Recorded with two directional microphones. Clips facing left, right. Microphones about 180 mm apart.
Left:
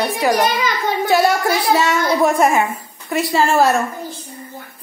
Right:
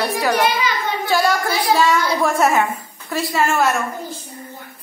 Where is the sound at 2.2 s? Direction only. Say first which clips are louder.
Left 3 dB; 10° left (ahead or behind).